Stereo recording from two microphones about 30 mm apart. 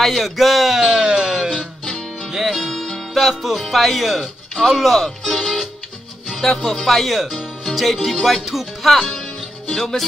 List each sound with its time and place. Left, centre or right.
0.0 s music: centre
2.3 s music: centre
2.6 s music: centre
3.2 s speech: centre
7.6 s music: centre
8.5 s speech: centre
9.1 s music: centre